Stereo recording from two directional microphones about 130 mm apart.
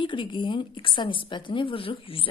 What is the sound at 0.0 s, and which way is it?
Speech, 40° left (ahead or behind).